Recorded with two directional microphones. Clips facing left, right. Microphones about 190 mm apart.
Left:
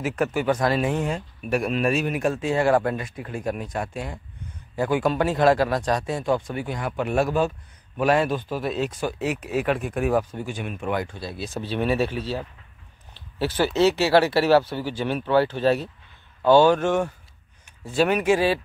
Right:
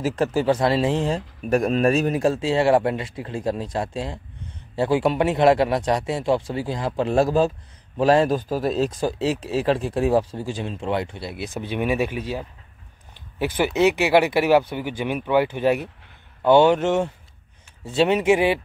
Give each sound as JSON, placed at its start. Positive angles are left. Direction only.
{"t": 0.0, "sound": "a man's voice", "side_deg": -30}